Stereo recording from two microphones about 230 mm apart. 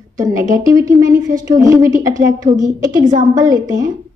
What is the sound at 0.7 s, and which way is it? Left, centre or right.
A woman's voice, centre.